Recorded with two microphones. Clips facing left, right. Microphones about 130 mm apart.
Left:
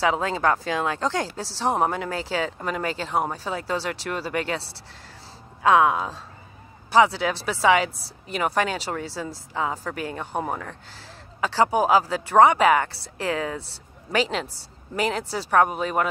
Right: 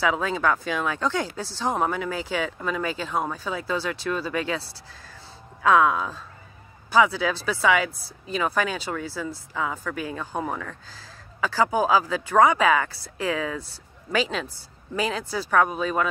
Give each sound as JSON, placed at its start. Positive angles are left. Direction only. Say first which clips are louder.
{"t": 0.0, "sound": "speech", "louder": "left 1 dB", "side_deg": 25}
{"t": 5.7, "sound": "speech", "louder": "left 1 dB", "side_deg": 20}